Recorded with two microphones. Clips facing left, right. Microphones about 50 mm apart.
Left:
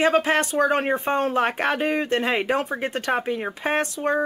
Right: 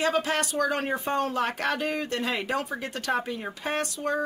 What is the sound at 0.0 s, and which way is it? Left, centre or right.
Speech, left.